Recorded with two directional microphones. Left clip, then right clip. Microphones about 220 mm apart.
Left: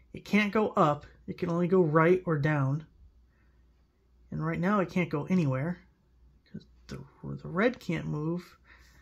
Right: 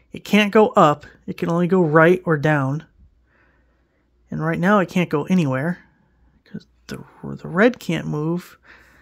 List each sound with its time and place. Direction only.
0.1 s speech: 45° right (ahead or behind)
4.3 s speech: 45° right (ahead or behind)